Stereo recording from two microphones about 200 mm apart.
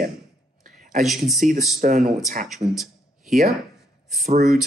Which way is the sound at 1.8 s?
40° right (ahead or behind).